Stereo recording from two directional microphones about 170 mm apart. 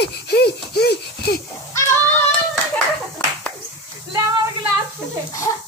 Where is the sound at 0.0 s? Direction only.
75° left (ahead or behind).